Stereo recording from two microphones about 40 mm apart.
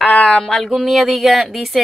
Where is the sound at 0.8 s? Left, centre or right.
Centre.